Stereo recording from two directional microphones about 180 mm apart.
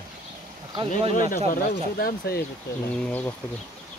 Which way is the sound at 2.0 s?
60° left (ahead or behind).